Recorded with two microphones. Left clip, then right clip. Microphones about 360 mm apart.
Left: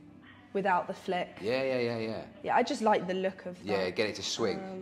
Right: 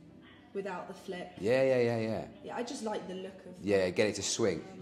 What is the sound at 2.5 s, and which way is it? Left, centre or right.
Speech, left.